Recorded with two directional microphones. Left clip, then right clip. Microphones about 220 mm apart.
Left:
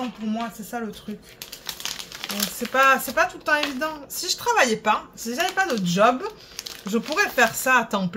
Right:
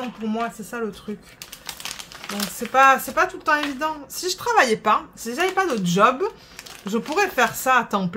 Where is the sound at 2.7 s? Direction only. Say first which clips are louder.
Right 3 dB; 20° right (ahead or behind).